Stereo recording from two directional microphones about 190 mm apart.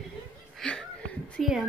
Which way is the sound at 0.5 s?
5° left (ahead or behind).